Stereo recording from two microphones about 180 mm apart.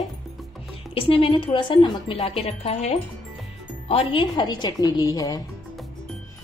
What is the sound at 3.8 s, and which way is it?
Speech, 30° left (ahead or behind).